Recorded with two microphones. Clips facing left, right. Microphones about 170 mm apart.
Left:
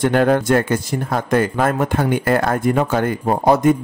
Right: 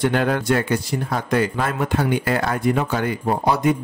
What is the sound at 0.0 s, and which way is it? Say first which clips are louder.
Speech: left 5 dB; 45° left (ahead or behind).